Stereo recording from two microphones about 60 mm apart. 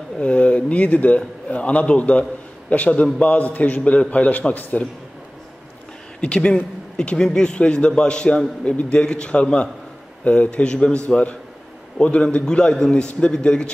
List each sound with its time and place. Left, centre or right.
0.2 s a man's voice: left
6.2 s a man's voice: centre